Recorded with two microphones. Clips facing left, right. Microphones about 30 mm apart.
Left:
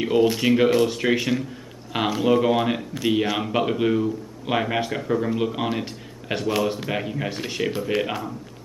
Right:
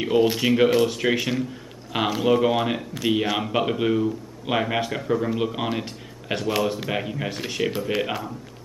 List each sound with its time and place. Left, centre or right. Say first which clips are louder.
0.0 s speech: left 1 dB; centre